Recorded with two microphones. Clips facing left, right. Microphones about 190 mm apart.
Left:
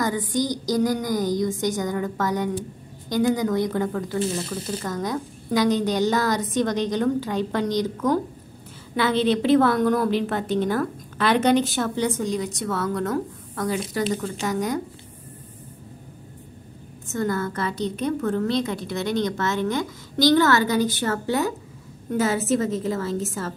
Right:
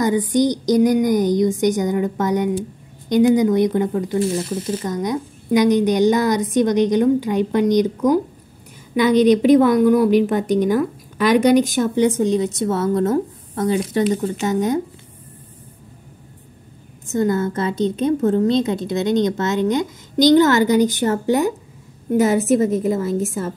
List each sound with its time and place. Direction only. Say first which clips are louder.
0.0 s a woman's voice: right 7 dB; 20° right (ahead or behind)
17.1 s a woman's voice: right 6 dB; 20° right (ahead or behind)